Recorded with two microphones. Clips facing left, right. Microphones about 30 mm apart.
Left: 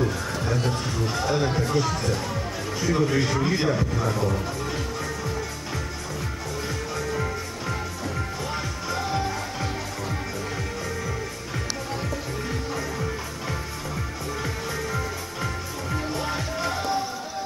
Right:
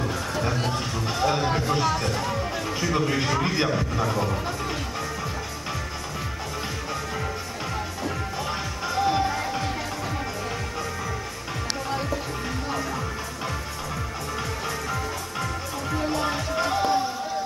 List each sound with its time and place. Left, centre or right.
0.4 s music: centre
1.7 s speech: centre
8.9 s music: centre
16.0 s music: centre